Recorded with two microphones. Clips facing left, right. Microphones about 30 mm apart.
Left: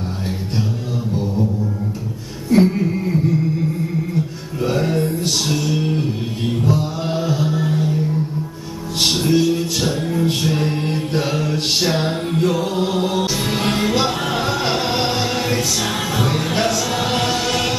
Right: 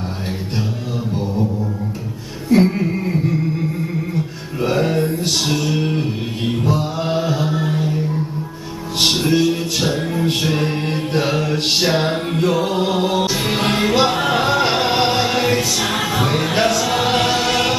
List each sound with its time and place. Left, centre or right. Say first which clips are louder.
1.1 s music: even; centre
2.5 s music: even; centre
9.0 s music: right 1 dB; centre